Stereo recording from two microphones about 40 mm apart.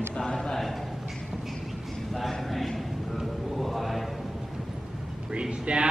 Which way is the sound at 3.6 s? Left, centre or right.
Centre.